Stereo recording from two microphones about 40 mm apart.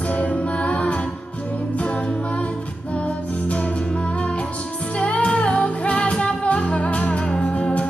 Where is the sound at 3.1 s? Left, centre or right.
Left.